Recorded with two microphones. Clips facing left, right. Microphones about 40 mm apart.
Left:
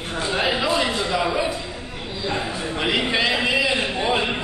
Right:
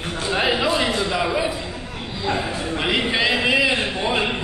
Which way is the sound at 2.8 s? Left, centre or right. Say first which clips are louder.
Even; centre.